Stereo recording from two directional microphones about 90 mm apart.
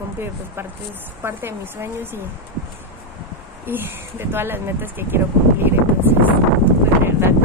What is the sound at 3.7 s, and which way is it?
Speech, 25° right (ahead or behind).